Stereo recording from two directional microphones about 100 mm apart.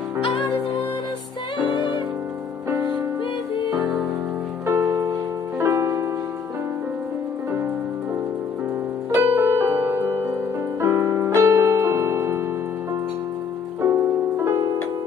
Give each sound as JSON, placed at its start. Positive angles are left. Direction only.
{"t": 4.6, "sound": "music", "side_deg": -30}
{"t": 9.2, "sound": "music", "side_deg": -25}
{"t": 13.8, "sound": "music", "side_deg": -25}